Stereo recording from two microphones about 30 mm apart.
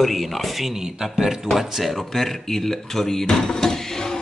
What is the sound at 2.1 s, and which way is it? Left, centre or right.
Speech, centre.